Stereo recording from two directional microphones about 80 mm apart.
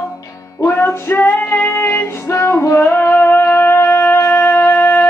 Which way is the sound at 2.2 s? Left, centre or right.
Left.